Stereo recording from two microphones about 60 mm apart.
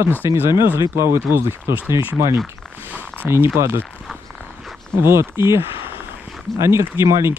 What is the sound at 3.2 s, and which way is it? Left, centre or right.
Speech, right.